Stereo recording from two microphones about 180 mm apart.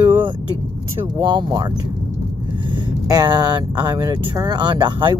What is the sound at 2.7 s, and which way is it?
Speech, 25° right (ahead or behind).